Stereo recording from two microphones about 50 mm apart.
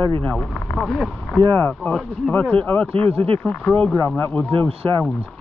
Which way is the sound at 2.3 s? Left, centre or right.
Left.